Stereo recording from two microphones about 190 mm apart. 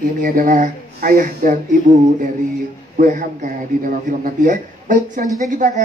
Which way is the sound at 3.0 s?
40° right (ahead or behind).